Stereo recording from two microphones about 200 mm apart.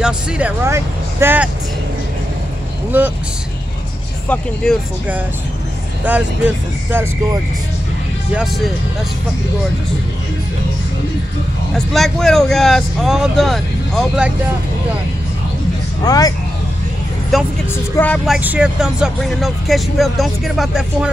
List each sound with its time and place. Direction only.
0.0 s speech: 5° right (ahead or behind)
6.0 s speech: 10° right (ahead or behind)
8.3 s speech: centre (ahead or behind)
11.7 s speech: centre (ahead or behind)
16.0 s speech: 20° left (ahead or behind)
17.3 s speech: centre (ahead or behind)